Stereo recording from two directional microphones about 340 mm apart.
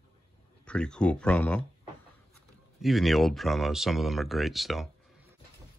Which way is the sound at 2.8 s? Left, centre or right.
Centre.